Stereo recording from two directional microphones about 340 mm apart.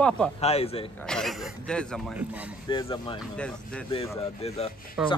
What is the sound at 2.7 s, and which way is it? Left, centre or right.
Speech, centre.